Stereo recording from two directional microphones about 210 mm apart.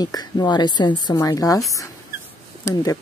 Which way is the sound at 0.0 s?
20° left (ahead or behind).